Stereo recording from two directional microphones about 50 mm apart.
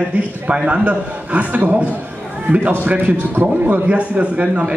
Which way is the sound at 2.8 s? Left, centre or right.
Right.